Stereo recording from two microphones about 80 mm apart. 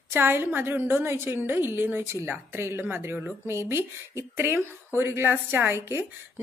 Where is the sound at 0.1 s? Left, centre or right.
Right.